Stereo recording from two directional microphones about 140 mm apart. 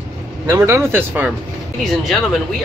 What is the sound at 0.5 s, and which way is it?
Speech, 20° right (ahead or behind).